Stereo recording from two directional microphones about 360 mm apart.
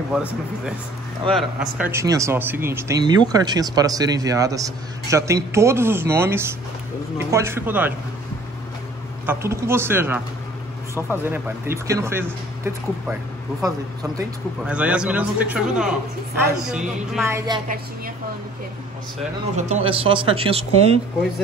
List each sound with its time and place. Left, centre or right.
0.1 s a man's voice: centre
9.2 s a man's voice: centre
19.5 s speech: centre